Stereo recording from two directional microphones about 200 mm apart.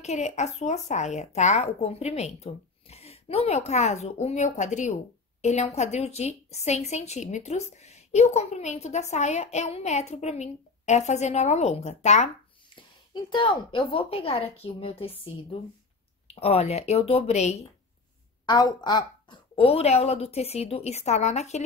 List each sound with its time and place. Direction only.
0.0 s a woman's voice: 35° left (ahead or behind)
12.6 s a woman's voice: 25° left (ahead or behind)
16.3 s a woman's voice: 30° left (ahead or behind)
18.4 s a woman's voice: 20° left (ahead or behind)